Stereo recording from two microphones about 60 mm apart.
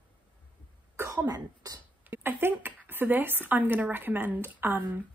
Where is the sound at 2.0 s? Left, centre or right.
Right.